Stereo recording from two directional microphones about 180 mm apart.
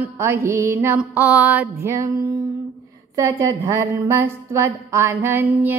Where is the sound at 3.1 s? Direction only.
15° right (ahead or behind).